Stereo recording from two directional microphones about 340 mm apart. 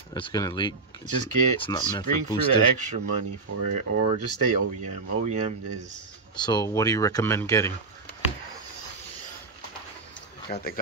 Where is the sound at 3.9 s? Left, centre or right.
Right.